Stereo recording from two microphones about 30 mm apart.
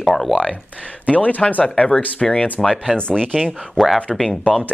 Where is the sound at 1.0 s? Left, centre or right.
Left.